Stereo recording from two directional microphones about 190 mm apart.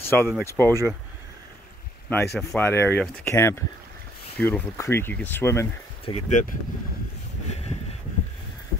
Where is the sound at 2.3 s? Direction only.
5° left (ahead or behind).